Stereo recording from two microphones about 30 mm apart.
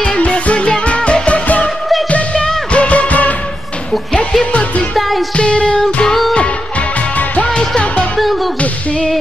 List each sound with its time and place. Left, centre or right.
0.3 s music: left
2.7 s music: left
4.5 s music: left
4.9 s music: centre
5.3 s music: left
7.4 s music: left